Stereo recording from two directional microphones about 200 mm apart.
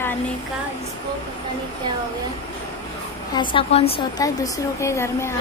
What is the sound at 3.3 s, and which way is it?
Speech, 30° left (ahead or behind).